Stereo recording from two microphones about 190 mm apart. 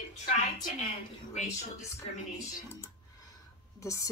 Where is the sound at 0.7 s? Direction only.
35° left (ahead or behind).